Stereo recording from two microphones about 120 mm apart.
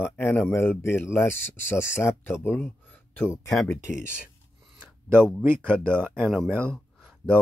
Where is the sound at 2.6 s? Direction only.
15° left (ahead or behind).